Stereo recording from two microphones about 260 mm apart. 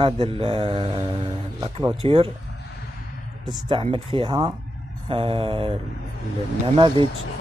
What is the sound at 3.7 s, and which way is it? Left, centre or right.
Mantra, centre.